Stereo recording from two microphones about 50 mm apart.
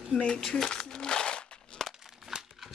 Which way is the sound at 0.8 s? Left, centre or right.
Centre.